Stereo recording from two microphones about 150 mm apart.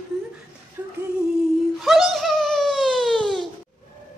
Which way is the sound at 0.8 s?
20° right (ahead or behind).